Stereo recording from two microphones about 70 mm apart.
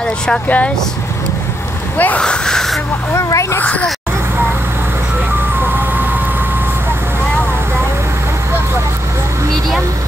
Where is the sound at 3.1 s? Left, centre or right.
Left.